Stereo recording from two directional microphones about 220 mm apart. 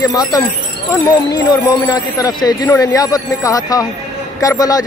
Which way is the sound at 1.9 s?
15° left (ahead or behind).